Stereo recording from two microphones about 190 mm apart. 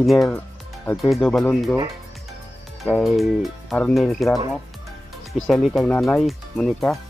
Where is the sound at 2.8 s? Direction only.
Centre (ahead or behind).